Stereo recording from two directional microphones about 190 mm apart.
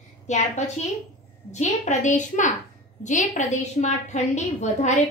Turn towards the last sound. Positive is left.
turn(degrees=40)  # may be behind; listen again after turning